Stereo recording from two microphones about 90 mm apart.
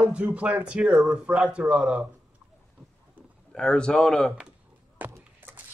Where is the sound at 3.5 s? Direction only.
10° left (ahead or behind).